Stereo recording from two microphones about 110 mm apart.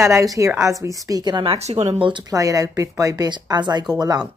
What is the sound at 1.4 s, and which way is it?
Speech, 70° right (ahead or behind).